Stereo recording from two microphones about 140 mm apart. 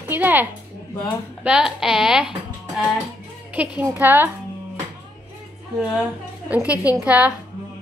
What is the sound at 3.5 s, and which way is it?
Speech, 10° right (ahead or behind).